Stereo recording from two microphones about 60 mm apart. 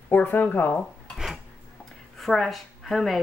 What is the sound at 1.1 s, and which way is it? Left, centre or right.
Dishes, centre.